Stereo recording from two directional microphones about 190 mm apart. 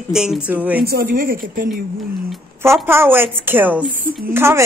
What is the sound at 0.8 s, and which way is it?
Speech, 50° right (ahead or behind).